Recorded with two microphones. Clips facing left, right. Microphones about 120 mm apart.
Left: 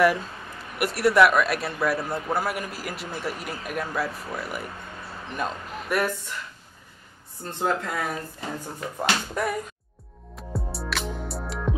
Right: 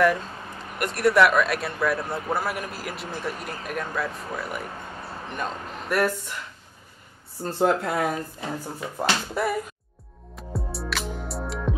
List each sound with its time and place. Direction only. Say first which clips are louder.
0.7 s speech: even; 5° left (ahead or behind)
7.4 s speech: right 4 dB; 35° right (ahead or behind)
8.6 s speech: even; 5° right (ahead or behind)
10.3 s music: even; centre (ahead or behind)